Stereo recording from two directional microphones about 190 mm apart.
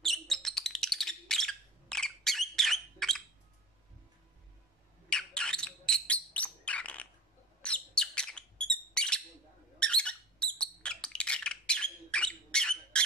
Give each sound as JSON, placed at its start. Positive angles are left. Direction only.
{"t": 0.0, "sound": "bird", "side_deg": 0}
{"t": 5.1, "sound": "bird", "side_deg": 5}
{"t": 9.8, "sound": "squeak", "side_deg": 5}